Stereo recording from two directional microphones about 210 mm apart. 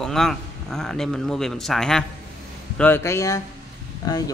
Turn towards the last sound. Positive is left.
turn(degrees=15)  # may be behind; listen again after turning